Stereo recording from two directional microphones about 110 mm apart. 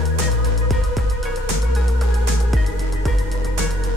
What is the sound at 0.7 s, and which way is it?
Music, centre (ahead or behind).